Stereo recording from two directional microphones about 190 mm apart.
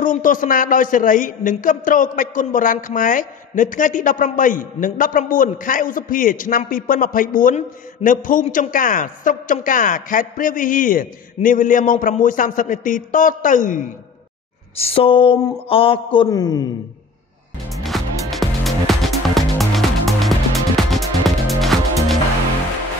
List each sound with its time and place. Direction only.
0.0 s a man's voice: 45° left (ahead or behind)
14.8 s speech: 30° left (ahead or behind)
17.9 s music: centre (ahead or behind)